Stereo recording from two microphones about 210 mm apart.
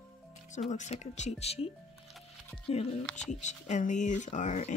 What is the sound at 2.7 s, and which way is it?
Speech, 30° left (ahead or behind).